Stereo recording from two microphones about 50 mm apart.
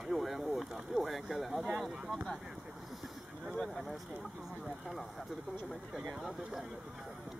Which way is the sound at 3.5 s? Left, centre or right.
Centre.